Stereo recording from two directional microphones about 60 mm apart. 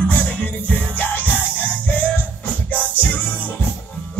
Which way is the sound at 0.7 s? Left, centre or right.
Left.